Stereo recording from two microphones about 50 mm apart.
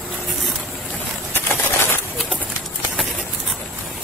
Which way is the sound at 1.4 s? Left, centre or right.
Left.